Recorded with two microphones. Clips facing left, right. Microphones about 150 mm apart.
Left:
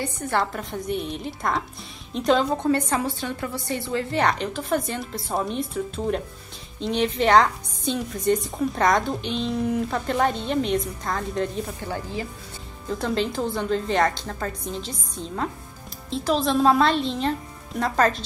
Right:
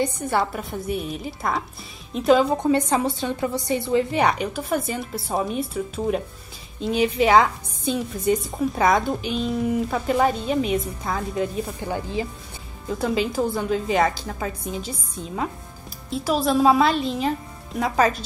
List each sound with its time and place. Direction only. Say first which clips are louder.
0.0 s a woman's voice: right 3 dB; 10° right (ahead or behind)
12.8 s a woman's voice: right 2 dB; 5° right (ahead or behind)